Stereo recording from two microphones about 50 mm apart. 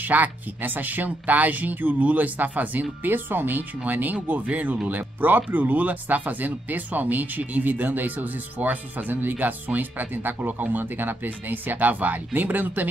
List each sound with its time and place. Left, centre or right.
0.0 s speech: right